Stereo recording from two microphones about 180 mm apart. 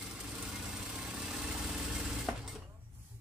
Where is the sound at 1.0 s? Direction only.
5° right (ahead or behind).